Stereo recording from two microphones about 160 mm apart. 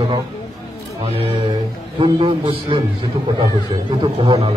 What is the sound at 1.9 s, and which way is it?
Speech, 30° right (ahead or behind).